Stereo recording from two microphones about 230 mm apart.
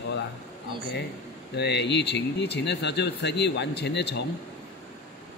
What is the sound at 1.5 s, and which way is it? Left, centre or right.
A man's voice, left.